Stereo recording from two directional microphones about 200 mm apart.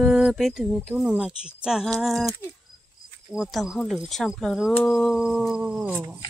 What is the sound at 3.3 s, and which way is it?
Speech, centre (ahead or behind).